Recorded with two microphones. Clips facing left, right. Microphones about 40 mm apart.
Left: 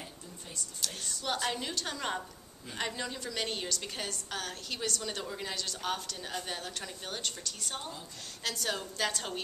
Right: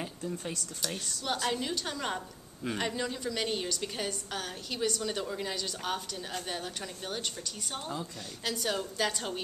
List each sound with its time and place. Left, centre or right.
1.2 s a woman's voice: centre